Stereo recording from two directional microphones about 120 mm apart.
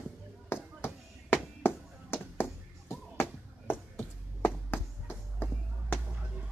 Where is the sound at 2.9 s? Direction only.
20° left (ahead or behind).